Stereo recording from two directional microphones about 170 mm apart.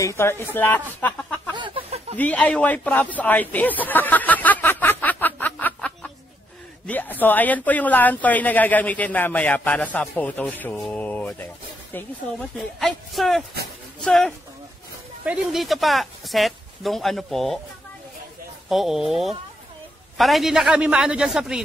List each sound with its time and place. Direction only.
0.0 s speech: 15° left (ahead or behind)
1.5 s a sound: 30° right (ahead or behind)
2.1 s speech: 10° left (ahead or behind)
3.8 s a sound: 10° left (ahead or behind)
6.9 s speech: 10° left (ahead or behind)
12.7 s speech: centre (ahead or behind)
18.7 s speech: centre (ahead or behind)